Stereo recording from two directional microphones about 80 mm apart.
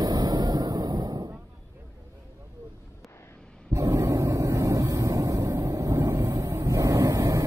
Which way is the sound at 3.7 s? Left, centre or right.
Right.